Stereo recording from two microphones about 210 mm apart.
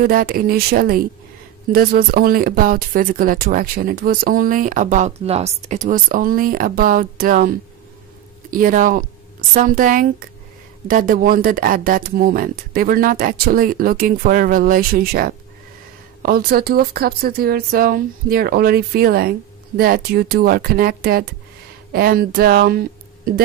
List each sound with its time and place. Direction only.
0.0 s speech: 45° right (ahead or behind)